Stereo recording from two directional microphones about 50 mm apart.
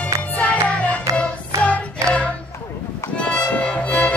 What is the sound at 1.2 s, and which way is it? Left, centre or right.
Music, left.